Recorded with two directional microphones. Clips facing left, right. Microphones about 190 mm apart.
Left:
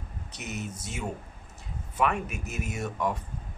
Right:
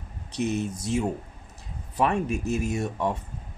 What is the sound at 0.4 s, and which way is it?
Speech, 30° right (ahead or behind).